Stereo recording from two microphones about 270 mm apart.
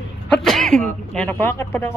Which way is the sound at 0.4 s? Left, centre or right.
Centre.